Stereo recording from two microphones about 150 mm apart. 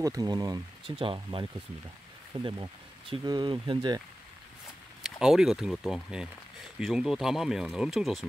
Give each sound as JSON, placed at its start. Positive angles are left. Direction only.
{"t": 0.0, "sound": "speech", "side_deg": -25}
{"t": 0.8, "sound": "speech", "side_deg": -35}
{"t": 5.0, "sound": "speech", "side_deg": 0}